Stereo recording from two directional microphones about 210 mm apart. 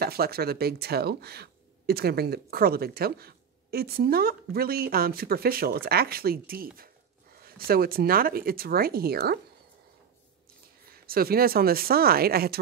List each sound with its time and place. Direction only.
0.0 s speech: 45° right (ahead or behind)
10.9 s speech: 45° right (ahead or behind)